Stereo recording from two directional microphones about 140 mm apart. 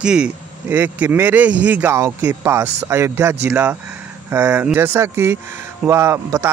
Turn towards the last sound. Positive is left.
turn(degrees=-20)  # may be behind; listen again after turning